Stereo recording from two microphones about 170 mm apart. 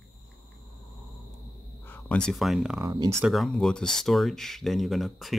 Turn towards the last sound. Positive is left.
turn(degrees=0)  # may be behind; listen again after turning